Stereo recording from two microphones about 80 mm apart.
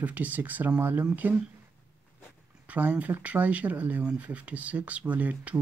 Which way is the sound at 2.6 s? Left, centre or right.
Centre.